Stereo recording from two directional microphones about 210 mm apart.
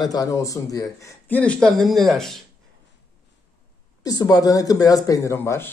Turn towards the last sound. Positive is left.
turn(degrees=10)  # may be behind; listen again after turning